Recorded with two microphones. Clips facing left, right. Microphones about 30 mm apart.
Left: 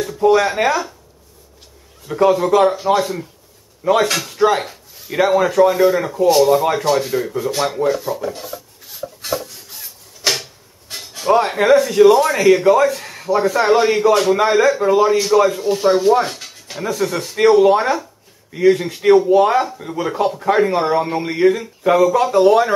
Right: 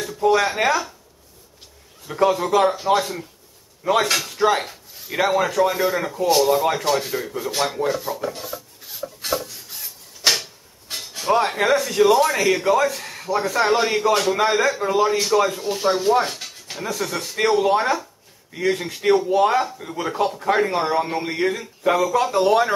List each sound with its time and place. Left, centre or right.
0.0 s speech: centre
2.0 s speech: centre